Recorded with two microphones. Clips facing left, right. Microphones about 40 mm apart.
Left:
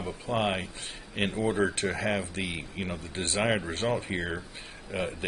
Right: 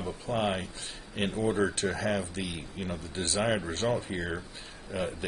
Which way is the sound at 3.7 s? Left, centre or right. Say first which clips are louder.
Left 1 dB; centre.